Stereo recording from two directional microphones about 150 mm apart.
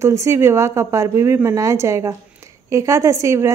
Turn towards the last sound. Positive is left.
turn(degrees=-20)  # may be behind; listen again after turning